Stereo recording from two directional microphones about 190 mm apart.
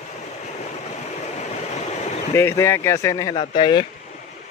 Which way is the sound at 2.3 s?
15° left (ahead or behind).